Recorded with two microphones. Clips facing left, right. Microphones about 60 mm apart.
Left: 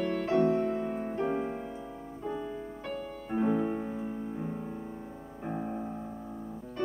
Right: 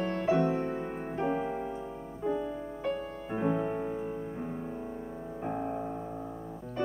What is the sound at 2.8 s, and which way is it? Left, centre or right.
Music, centre.